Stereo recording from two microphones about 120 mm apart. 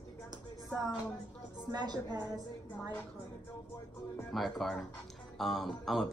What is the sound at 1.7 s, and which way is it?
Speech, 35° right (ahead or behind).